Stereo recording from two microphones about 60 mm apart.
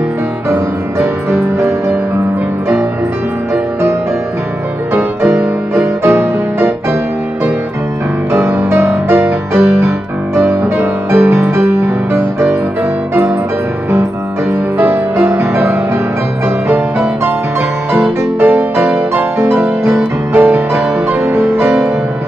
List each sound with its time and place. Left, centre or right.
0.5 s music: right
4.9 s music: right
8.3 s music: right
10.4 s music: right
14.8 s music: right
18.4 s music: right